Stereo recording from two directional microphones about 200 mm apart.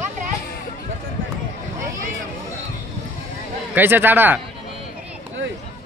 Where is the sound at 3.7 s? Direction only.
10° right (ahead or behind).